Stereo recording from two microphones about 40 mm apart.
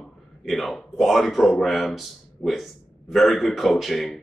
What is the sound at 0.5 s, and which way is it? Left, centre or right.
Speech, centre.